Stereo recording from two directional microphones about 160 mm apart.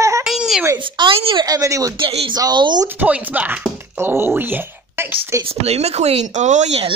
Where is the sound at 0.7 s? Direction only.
30° right (ahead or behind).